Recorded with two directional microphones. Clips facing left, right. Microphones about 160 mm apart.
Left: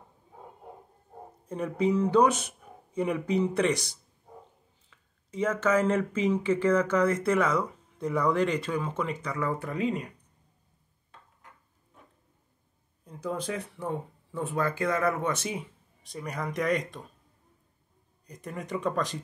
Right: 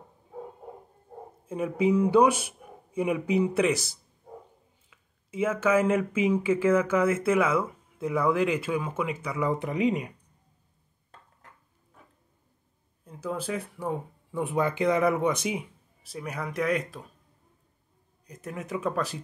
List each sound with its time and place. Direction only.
1.4 s speech: 5° right (ahead or behind)
13.0 s speech: 5° right (ahead or behind)
18.2 s speech: centre (ahead or behind)